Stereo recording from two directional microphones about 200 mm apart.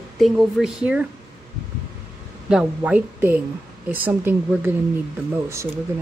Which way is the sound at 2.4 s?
5° right (ahead or behind).